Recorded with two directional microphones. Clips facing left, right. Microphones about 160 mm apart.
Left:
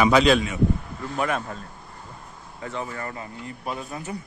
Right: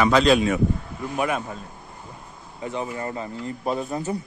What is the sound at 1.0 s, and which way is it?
A man's voice, 15° right (ahead or behind).